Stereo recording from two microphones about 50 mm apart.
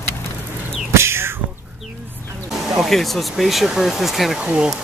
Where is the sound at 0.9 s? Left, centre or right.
Right.